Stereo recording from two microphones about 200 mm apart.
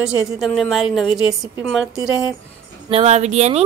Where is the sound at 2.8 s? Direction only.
30° right (ahead or behind).